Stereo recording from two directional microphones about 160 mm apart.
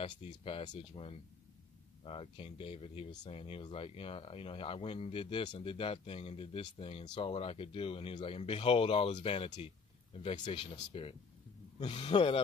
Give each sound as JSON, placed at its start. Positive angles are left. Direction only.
{"t": 0.0, "sound": "speech", "side_deg": 35}